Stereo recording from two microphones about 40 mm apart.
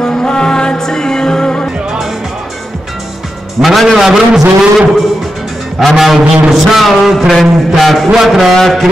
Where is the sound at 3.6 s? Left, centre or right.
Centre.